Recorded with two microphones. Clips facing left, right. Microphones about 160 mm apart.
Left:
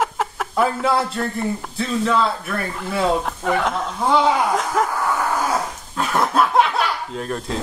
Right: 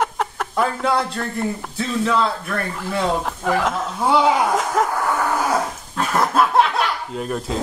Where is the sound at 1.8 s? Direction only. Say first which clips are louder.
Even; centre (ahead or behind).